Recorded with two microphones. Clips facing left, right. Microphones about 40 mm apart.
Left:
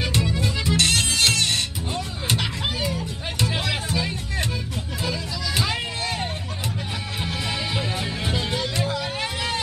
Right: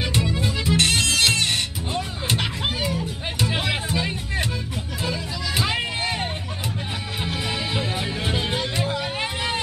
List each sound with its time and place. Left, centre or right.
0.0 s music: centre
0.4 s music: centre
7.2 s music: centre
9.0 s vehicle: centre